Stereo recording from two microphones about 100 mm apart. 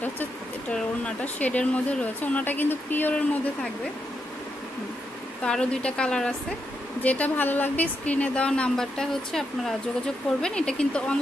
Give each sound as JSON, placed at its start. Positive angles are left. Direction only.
{"t": 0.0, "sound": "speech", "side_deg": 15}
{"t": 5.4, "sound": "a woman's voice", "side_deg": 10}